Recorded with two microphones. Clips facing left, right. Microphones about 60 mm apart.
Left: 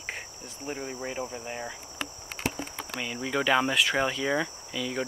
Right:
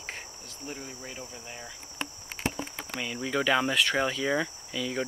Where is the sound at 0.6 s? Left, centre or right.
Left.